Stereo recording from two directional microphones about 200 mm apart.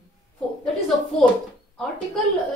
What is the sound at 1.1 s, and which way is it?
Speech, 5° left (ahead or behind).